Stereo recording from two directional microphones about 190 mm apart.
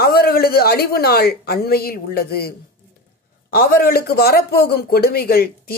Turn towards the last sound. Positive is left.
turn(degrees=50)  # may be behind; listen again after turning